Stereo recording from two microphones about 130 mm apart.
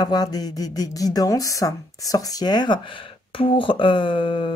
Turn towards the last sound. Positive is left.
turn(degrees=40)  # may be behind; listen again after turning